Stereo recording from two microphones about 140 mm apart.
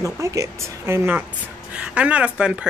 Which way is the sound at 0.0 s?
20° right (ahead or behind).